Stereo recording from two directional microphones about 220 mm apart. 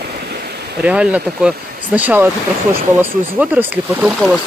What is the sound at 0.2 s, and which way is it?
Stream, 45° right (ahead or behind).